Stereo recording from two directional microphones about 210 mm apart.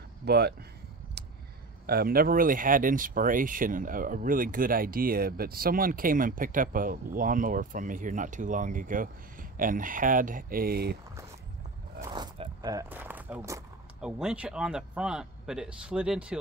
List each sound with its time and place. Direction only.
0.2 s speech: 50° right (ahead or behind)
1.2 s a sound: 50° right (ahead or behind)
1.9 s speech: 45° right (ahead or behind)
12.0 s zipper: 20° right (ahead or behind)
14.0 s speech: 5° right (ahead or behind)